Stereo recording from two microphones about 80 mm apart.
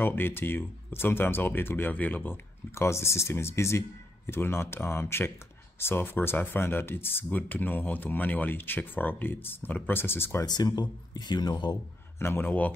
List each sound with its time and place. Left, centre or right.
0.0 s speech: left
2.7 s speech: left
10.4 s speech: left
12.2 s speech: left